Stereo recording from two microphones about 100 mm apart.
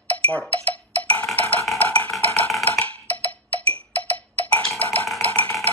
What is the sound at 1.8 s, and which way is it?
Wood block, 15° left (ahead or behind).